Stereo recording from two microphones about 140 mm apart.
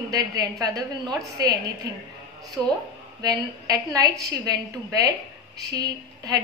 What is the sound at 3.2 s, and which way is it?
A woman's voice, 25° right (ahead or behind).